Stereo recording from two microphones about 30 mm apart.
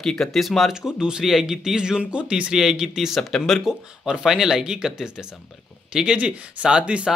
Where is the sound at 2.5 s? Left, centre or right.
Centre.